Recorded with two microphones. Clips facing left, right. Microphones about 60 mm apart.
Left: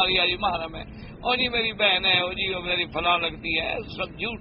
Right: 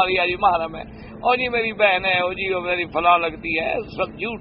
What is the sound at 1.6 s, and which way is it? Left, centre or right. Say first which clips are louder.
Speech: right 6 dB; right.